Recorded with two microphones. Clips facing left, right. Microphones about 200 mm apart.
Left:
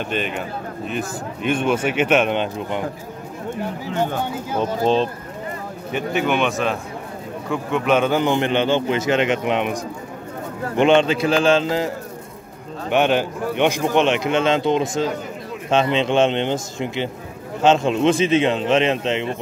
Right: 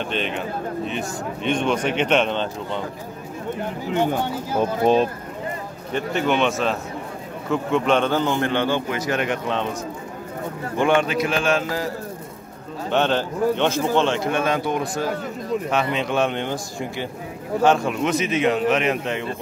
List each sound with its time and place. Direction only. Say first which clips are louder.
0.0 s speech: left 1 dB; 5° left (ahead or behind)
4.6 s speech: right 1 dB; 10° right (ahead or behind)
5.9 s a man's voice: left 1 dB; 5° left (ahead or behind)
10.8 s speech: left 4 dB; 25° left (ahead or behind)
12.9 s speech: left 3 dB; 15° left (ahead or behind)